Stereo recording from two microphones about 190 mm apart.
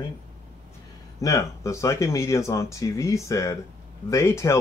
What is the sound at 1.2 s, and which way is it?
Speech, 15° left (ahead or behind).